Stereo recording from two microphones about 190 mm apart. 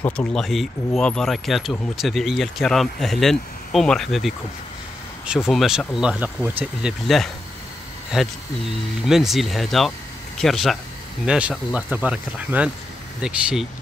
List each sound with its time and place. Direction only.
0.0 s speech: 5° left (ahead or behind)